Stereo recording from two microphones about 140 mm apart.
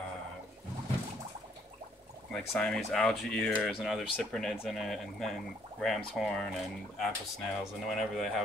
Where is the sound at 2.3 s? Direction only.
5° left (ahead or behind).